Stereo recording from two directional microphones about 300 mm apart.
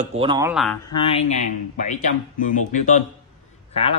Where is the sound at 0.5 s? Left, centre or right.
Centre.